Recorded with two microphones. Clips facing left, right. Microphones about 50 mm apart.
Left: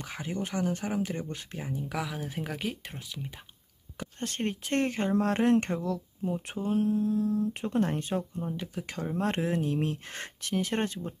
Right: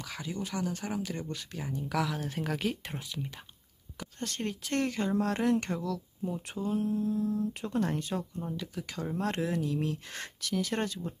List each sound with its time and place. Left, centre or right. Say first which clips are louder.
0.0 s speech: left 3 dB; left
1.7 s speech: right 3 dB; centre
4.2 s speech: left 3 dB; left